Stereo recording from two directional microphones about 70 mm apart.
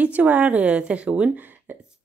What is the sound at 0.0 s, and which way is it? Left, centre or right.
A woman's voice, centre.